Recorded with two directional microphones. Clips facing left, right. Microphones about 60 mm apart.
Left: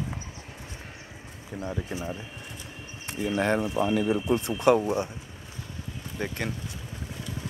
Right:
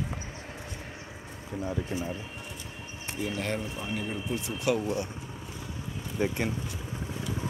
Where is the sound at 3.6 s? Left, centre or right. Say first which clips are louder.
Left 9 dB; left.